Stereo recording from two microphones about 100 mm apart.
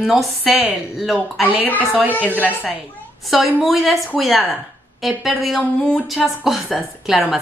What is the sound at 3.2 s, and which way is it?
A woman's voice, centre (ahead or behind).